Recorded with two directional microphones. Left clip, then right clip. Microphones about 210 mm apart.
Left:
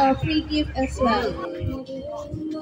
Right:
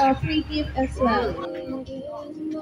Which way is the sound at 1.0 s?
45° left (ahead or behind).